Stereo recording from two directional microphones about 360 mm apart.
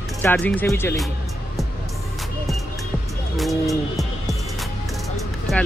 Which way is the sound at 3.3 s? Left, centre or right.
Centre.